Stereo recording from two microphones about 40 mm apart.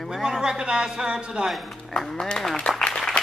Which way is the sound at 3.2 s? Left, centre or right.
Left.